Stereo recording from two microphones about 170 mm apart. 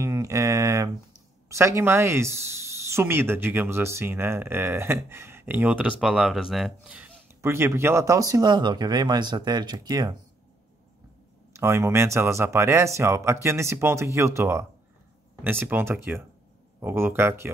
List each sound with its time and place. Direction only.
0.0 s mantra: 20° right (ahead or behind)
1.5 s speech: 15° right (ahead or behind)
11.5 s speech: 15° right (ahead or behind)